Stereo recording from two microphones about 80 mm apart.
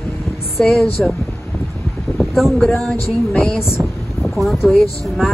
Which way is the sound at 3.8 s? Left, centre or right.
Centre.